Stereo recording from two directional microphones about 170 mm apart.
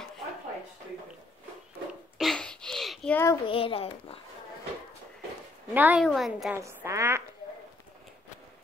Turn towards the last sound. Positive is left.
turn(degrees=-15)  # may be behind; listen again after turning